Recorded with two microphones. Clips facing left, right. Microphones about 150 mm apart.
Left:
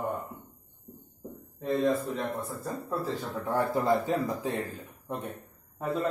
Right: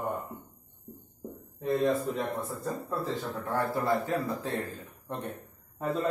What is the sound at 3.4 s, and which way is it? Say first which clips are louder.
A man's voice: left 3 dB; 15° left (ahead or behind).